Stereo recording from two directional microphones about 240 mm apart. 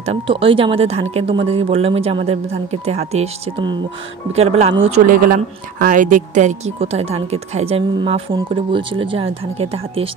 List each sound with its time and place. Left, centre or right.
0.0 s speech: right